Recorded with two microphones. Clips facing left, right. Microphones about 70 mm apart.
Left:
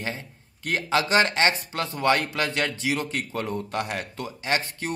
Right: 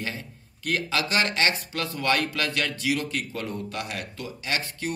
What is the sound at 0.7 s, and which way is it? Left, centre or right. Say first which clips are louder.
A man's voice: left 3 dB; left.